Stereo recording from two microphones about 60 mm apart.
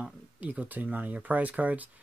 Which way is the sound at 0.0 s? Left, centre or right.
Right.